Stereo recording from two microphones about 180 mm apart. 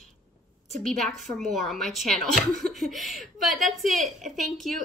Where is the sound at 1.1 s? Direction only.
Centre (ahead or behind).